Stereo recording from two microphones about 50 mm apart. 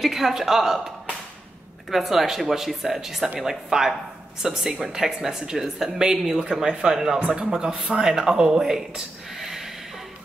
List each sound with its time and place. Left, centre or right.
0.0 s speech: centre
7.2 s a man's voice: right
7.4 s speech: centre